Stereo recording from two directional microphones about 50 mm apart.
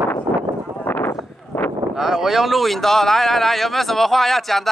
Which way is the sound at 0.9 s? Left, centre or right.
Left.